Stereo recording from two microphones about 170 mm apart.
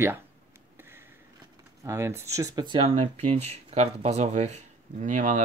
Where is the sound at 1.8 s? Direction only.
15° right (ahead or behind).